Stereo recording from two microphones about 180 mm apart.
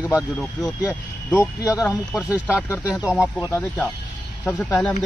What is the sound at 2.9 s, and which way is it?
Speech, 5° right (ahead or behind).